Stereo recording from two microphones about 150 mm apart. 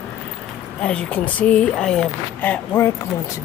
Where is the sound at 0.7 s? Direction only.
5° left (ahead or behind).